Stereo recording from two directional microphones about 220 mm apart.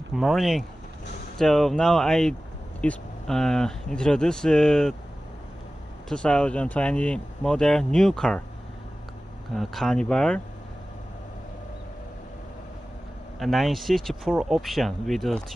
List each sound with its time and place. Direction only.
0.1 s speech: centre (ahead or behind)
6.0 s speech: 5° left (ahead or behind)
9.6 s speech: centre (ahead or behind)
13.4 s speech: centre (ahead or behind)